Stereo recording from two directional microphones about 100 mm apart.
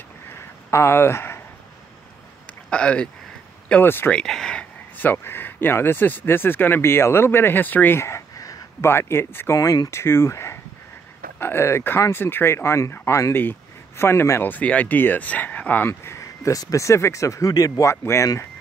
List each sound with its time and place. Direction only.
0.3 s a sound: 25° left (ahead or behind)
2.7 s speech: 10° left (ahead or behind)
4.1 s speech: 5° left (ahead or behind)
15.9 s speech: 30° left (ahead or behind)